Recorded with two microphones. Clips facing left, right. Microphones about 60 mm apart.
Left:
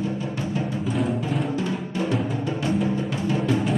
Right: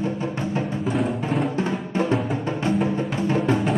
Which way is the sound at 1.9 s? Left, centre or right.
Right.